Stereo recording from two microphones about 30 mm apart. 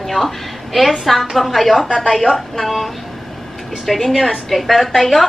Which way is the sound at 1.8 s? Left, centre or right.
Centre.